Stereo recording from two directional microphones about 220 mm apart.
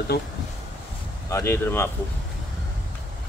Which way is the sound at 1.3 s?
10° left (ahead or behind).